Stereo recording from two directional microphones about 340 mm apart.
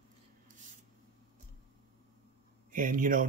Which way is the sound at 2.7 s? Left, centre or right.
Right.